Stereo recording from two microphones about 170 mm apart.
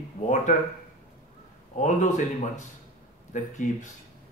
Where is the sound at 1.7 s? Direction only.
45° left (ahead or behind).